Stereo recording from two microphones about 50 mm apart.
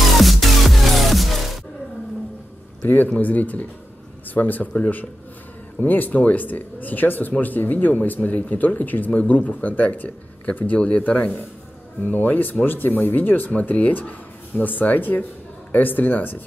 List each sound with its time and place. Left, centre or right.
0.2 s music: centre
2.8 s a man's voice: left